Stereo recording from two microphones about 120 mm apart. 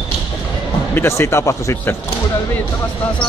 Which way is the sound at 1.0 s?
20° left (ahead or behind).